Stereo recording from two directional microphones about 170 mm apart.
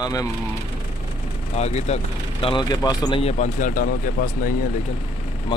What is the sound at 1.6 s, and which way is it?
Speech, 40° left (ahead or behind).